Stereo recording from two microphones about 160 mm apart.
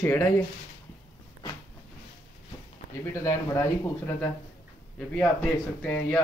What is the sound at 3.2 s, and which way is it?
A man's voice, 20° left (ahead or behind).